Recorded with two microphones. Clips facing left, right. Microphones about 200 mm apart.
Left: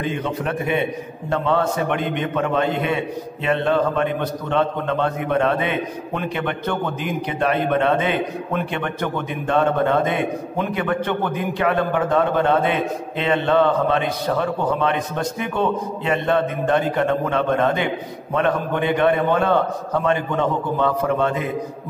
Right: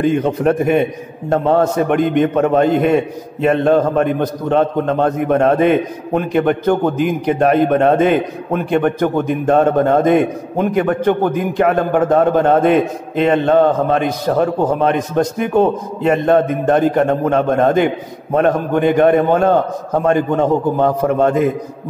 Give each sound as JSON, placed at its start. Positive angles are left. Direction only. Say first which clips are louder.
{"t": 0.0, "sound": "a man's voice", "louder": "right 10 dB", "side_deg": -45}